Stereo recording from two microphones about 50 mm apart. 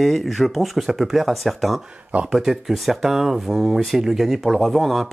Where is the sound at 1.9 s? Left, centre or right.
Right.